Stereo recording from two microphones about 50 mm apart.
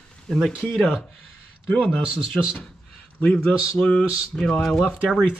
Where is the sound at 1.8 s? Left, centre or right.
Centre.